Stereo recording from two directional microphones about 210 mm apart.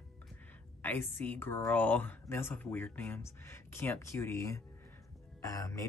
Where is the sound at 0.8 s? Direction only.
10° left (ahead or behind).